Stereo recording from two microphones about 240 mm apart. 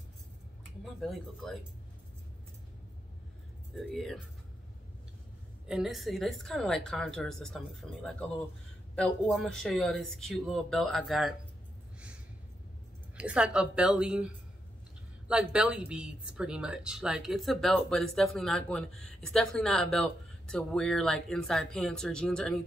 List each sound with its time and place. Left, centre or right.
1.0 s speech: centre
3.7 s speech: centre
5.7 s speech: centre
13.2 s speech: centre